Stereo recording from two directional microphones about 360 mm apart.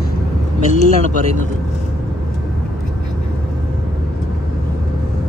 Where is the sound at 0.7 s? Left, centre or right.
Left.